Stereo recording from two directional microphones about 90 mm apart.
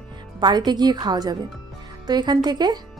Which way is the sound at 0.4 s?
50° right (ahead or behind).